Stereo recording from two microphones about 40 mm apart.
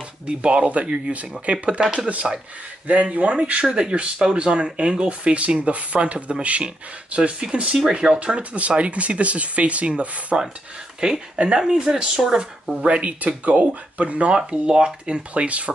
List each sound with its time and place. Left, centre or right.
0.3 s speech: right
2.9 s speech: right
3.6 s speech: centre
8.4 s speech: right
10.3 s speech: centre
12.8 s speech: right
14.3 s speech: right